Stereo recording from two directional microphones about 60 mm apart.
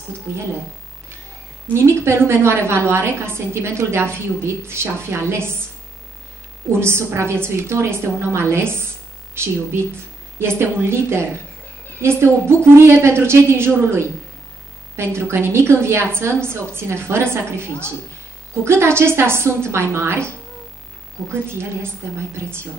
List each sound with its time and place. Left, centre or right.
1.7 s a woman's voice: right
6.7 s a woman's voice: right
21.3 s a woman's voice: right